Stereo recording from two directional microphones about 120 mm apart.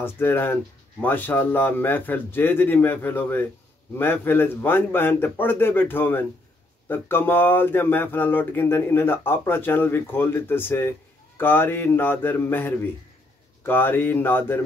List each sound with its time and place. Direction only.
0.0 s speech: 20° left (ahead or behind)